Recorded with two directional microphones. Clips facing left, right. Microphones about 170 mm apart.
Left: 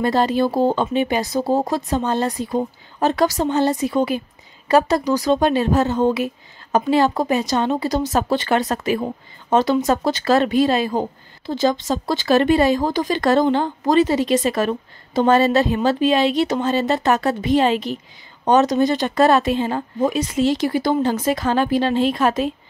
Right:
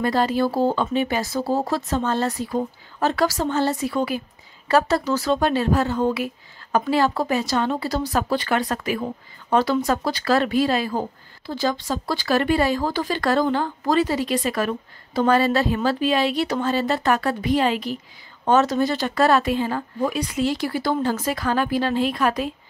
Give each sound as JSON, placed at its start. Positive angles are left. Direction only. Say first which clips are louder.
{"t": 0.0, "sound": "speech", "louder": "left 3 dB", "side_deg": 25}